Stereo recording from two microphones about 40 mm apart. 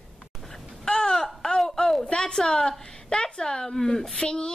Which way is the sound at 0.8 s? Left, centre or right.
Centre.